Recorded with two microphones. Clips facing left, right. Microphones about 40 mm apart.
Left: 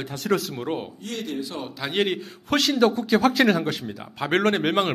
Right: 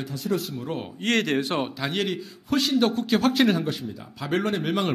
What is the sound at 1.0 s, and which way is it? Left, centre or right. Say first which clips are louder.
Speech: right 7 dB; right.